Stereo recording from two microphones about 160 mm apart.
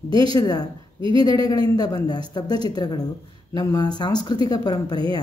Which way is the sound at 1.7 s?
25° left (ahead or behind).